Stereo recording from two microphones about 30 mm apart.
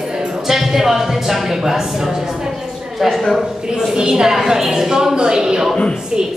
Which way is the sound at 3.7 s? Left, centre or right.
Right.